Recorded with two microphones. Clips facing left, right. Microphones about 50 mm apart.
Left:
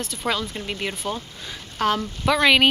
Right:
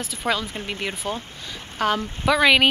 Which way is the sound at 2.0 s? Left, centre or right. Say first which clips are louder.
Even; right.